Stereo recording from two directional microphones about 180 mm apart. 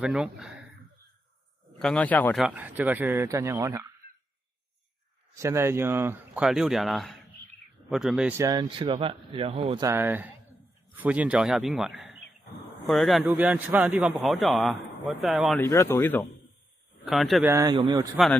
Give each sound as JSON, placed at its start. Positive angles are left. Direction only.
{"t": 0.0, "sound": "a man's voice", "side_deg": -5}
{"t": 1.8, "sound": "a man's voice", "side_deg": 5}
{"t": 2.4, "sound": "speech", "side_deg": -10}
{"t": 5.3, "sound": "a man's voice", "side_deg": -15}
{"t": 8.4, "sound": "speech", "side_deg": -20}
{"t": 9.8, "sound": "a man's voice", "side_deg": -10}
{"t": 15.6, "sound": "speech", "side_deg": 15}
{"t": 17.0, "sound": "a man's voice", "side_deg": 0}
{"t": 17.5, "sound": "speech", "side_deg": -20}